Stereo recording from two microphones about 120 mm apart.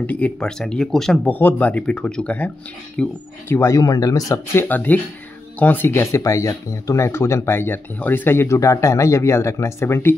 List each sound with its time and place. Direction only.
0.0 s speech: 10° left (ahead or behind)
3.4 s speech: 25° left (ahead or behind)
4.6 s speech: 15° left (ahead or behind)